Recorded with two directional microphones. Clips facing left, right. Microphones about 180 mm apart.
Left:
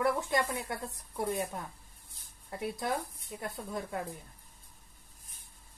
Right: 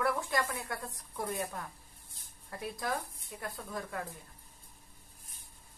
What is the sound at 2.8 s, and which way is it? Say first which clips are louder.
Speech: right 1 dB; 20° left (ahead or behind).